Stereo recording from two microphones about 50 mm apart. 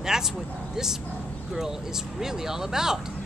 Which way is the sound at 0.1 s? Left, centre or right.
Centre.